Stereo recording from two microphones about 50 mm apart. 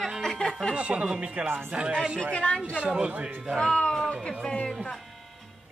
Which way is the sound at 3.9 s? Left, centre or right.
Centre.